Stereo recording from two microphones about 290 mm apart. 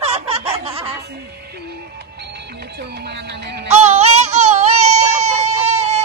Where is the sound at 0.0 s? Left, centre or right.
Right.